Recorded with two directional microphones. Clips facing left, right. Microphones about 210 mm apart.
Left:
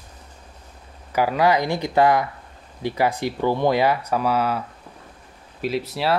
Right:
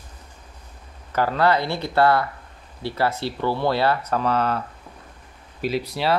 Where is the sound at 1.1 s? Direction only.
10° left (ahead or behind).